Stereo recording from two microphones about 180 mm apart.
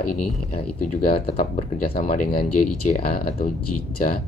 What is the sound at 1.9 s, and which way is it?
Speech, 45° left (ahead or behind).